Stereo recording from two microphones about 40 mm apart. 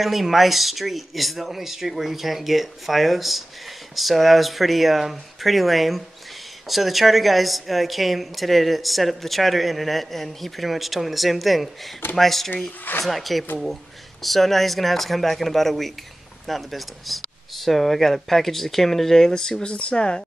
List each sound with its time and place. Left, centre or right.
0.0 s speech: centre
13.0 s speech: centre
19.6 s speech: left